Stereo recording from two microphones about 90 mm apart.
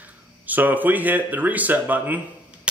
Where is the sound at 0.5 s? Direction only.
20° right (ahead or behind).